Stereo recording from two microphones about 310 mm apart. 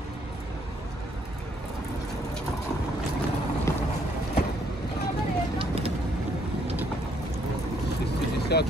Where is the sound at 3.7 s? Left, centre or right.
Centre.